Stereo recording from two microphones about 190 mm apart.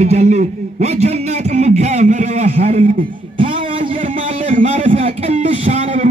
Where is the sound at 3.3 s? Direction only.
30° right (ahead or behind).